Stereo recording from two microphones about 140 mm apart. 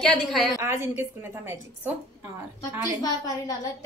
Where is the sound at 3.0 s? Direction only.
25° left (ahead or behind).